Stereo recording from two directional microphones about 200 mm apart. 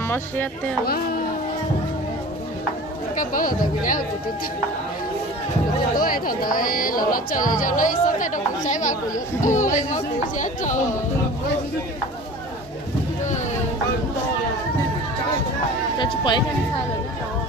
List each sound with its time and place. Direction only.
0.1 s speech: 10° left (ahead or behind)
3.2 s speech: 45° left (ahead or behind)
5.9 s speech: 45° left (ahead or behind)
16.0 s a sound: 20° left (ahead or behind)